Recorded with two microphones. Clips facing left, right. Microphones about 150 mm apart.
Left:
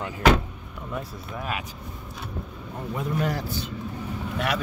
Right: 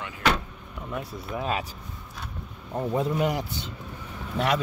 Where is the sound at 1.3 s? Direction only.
25° right (ahead or behind).